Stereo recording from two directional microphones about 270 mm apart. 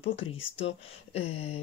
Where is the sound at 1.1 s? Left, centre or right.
Left.